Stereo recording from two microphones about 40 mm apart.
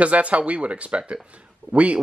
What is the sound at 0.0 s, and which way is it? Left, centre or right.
Speech, right.